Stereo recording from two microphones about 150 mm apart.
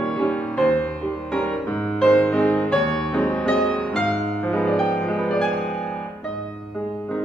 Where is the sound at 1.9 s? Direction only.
5° left (ahead or behind).